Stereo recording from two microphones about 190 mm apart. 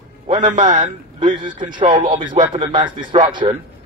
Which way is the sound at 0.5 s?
40° right (ahead or behind).